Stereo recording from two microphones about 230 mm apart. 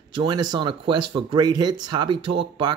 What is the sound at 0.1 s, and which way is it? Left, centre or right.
Speech, centre.